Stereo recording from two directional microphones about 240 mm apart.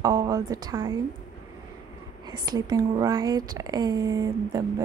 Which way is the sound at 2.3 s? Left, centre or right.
Centre.